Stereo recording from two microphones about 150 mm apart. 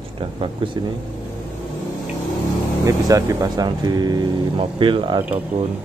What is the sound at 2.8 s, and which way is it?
Speech, 25° right (ahead or behind).